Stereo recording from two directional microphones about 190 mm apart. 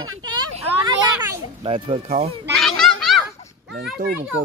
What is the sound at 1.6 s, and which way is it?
Speech, 30° right (ahead or behind).